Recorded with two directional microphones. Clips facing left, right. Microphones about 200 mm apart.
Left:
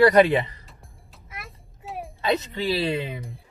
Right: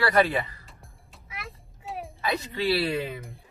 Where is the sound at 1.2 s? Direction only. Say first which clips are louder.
Right 1 dB; centre (ahead or behind).